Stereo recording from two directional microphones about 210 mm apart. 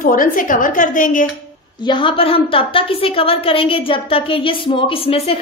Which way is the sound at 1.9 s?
25° left (ahead or behind).